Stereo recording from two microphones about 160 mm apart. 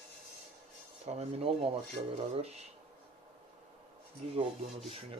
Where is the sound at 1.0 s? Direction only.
40° right (ahead or behind).